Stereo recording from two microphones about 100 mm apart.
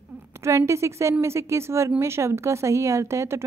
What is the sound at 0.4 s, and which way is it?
A woman's voice, 30° right (ahead or behind).